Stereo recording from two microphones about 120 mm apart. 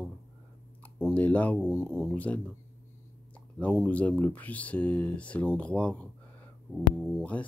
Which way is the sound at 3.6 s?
15° left (ahead or behind).